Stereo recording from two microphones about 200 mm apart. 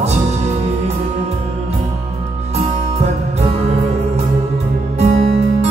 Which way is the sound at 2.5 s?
35° right (ahead or behind).